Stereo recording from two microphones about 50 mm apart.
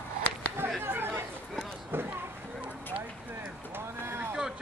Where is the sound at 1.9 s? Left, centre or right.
Right.